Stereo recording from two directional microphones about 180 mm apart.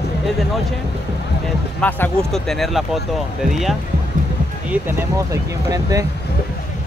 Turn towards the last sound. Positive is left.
turn(degrees=-20)  # may be behind; listen again after turning